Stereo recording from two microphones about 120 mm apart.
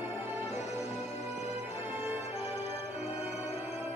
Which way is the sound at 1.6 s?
15° right (ahead or behind).